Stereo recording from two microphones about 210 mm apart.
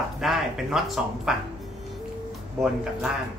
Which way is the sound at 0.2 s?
Centre (ahead or behind).